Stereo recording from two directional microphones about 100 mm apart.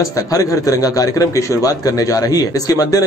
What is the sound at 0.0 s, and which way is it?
A man's voice, 35° left (ahead or behind).